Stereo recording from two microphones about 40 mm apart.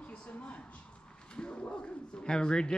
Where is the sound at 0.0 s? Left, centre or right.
Left.